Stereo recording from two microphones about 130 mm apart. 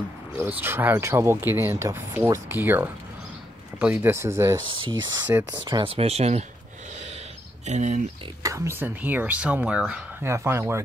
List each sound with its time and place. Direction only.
0.5 s speech: 15° right (ahead or behind)
3.9 s speech: 20° right (ahead or behind)
4.6 s speech: 40° right (ahead or behind)
5.3 s speech: 20° right (ahead or behind)
5.7 s speech: 40° right (ahead or behind)
7.6 s speech: 65° right (ahead or behind)
8.4 s speech: 25° right (ahead or behind); by 10.0 s 10° right (ahead or behind)
10.2 s speech: 20° right (ahead or behind)